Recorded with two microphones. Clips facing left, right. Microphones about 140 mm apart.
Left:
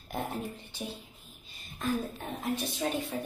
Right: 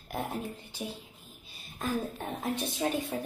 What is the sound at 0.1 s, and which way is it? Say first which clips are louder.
Speech: even; 5° right (ahead or behind).